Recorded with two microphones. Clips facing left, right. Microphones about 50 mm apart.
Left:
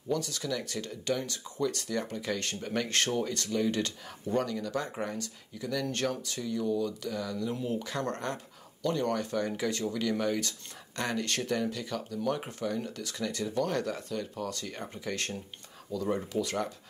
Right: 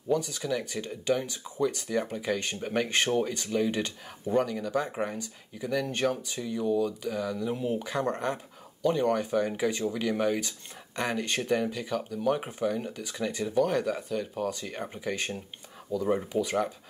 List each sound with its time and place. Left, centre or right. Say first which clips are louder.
0.1 s speech: right 4 dB; centre